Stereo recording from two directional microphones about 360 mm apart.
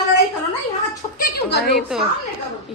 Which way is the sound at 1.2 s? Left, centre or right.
Left.